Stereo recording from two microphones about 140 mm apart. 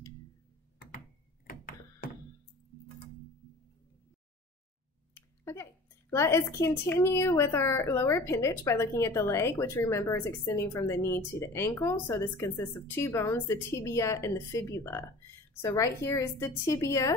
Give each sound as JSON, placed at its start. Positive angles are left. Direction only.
{"t": 5.1, "sound": "a woman's voice", "side_deg": 20}